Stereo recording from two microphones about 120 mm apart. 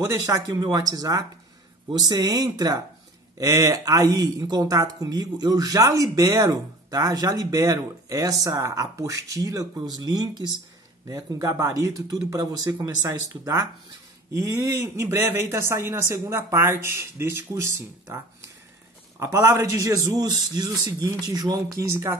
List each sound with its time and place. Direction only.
0.3 s speech: 35° right (ahead or behind)